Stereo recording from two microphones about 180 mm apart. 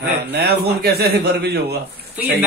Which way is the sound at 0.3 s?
65° right (ahead or behind).